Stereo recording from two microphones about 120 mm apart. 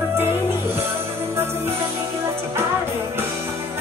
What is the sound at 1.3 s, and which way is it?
Music, 20° right (ahead or behind).